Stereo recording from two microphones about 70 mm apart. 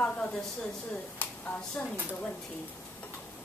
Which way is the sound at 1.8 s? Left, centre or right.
Left.